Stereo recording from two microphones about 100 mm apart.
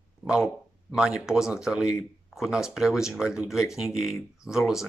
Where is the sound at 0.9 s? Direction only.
5° right (ahead or behind).